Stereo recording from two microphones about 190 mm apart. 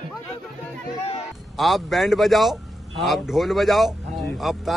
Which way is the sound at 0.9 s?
35° left (ahead or behind).